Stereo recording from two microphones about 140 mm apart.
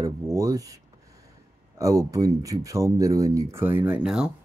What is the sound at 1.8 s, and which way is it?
Speech, 25° right (ahead or behind).